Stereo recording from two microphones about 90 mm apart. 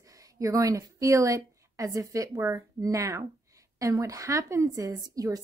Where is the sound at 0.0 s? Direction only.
40° right (ahead or behind).